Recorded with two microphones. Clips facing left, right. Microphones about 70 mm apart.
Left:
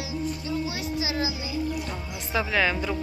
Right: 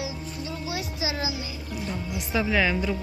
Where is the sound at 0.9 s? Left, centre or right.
Centre.